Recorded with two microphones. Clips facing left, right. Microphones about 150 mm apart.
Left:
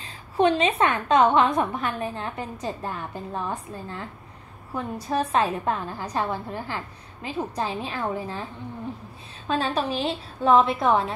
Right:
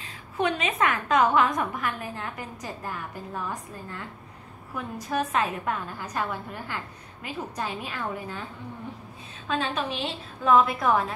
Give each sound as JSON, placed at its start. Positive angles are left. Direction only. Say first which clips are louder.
{"t": 0.0, "sound": "a woman's voice", "louder": "left 6 dB", "side_deg": 30}
{"t": 9.5, "sound": "a woman's voice", "louder": "left 4 dB", "side_deg": 35}